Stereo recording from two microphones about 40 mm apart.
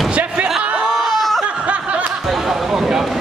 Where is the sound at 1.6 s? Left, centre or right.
Right.